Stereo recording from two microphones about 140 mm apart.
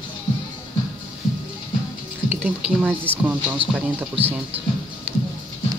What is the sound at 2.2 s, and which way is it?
Speech, 10° right (ahead or behind).